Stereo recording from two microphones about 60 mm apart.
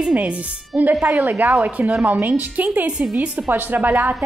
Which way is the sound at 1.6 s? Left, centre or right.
Centre.